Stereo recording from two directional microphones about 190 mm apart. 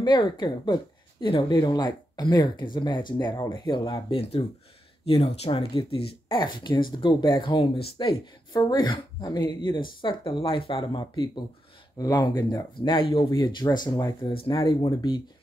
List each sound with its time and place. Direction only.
0.0 s speech: 25° left (ahead or behind)
12.8 s speech: 25° left (ahead or behind)